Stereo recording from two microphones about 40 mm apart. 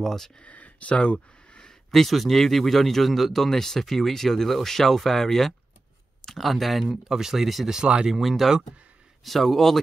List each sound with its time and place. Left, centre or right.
0.0 s speech: centre
0.4 s a sound: left
1.9 s speech: centre
7.8 s speech: right
8.1 s speech: centre